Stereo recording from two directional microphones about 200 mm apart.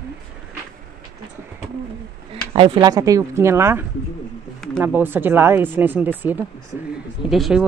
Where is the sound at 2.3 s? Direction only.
25° right (ahead or behind).